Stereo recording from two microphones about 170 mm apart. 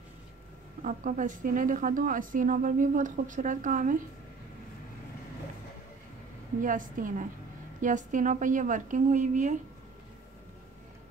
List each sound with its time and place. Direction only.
0.8 s a woman's voice: 45° right (ahead or behind)
6.6 s a woman's voice: 50° right (ahead or behind)